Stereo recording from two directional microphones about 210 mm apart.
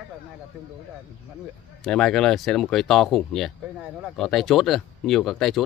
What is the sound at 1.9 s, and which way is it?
Speech, 5° left (ahead or behind).